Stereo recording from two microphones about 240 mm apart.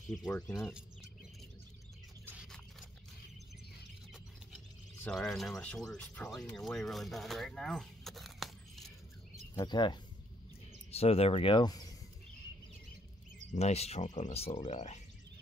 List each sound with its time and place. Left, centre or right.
0.1 s speech: centre
2.2 s a sound: centre
4.1 s speech: centre
9.6 s speech: centre
13.5 s speech: left